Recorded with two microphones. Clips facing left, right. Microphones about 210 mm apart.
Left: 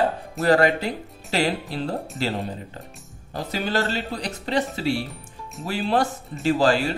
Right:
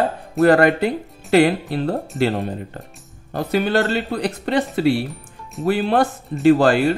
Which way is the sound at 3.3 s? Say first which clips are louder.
Right 7 dB; 60° right (ahead or behind).